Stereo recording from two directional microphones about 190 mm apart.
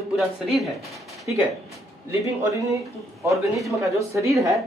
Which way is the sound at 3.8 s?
15° right (ahead or behind).